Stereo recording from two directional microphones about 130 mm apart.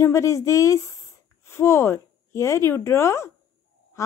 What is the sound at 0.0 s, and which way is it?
A woman's voice, 20° left (ahead or behind).